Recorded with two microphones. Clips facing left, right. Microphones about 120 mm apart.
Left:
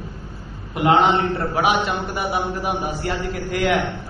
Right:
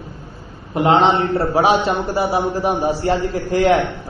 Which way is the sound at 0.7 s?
25° right (ahead or behind).